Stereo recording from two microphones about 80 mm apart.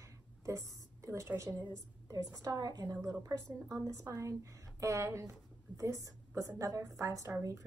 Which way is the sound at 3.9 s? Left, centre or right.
Right.